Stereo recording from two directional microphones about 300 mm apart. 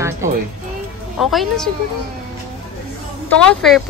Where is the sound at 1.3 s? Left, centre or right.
Centre.